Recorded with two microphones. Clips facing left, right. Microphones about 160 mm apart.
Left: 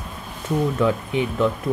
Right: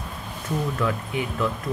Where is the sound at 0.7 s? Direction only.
20° left (ahead or behind).